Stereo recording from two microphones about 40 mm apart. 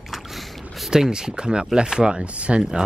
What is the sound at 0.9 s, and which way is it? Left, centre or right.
Speech, centre.